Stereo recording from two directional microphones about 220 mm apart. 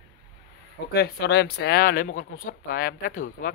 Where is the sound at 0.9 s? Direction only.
45° left (ahead or behind).